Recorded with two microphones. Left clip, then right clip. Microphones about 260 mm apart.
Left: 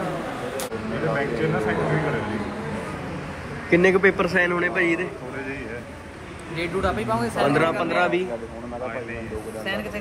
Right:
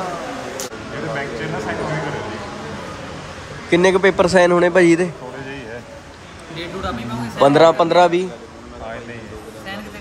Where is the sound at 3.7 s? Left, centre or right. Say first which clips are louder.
Right 4 dB; centre.